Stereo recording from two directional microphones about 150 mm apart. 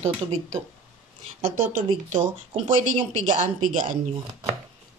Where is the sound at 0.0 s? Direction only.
45° right (ahead or behind).